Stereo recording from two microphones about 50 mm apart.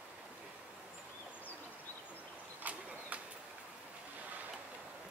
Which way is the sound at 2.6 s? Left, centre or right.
Right.